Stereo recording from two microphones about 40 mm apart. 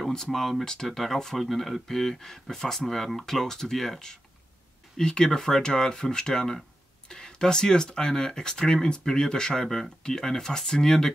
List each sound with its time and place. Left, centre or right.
0.1 s speech: centre